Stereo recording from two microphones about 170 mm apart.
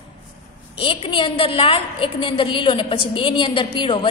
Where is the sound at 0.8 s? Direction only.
30° left (ahead or behind).